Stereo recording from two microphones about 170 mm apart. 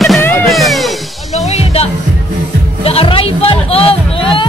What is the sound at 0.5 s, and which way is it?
Music, centre (ahead or behind).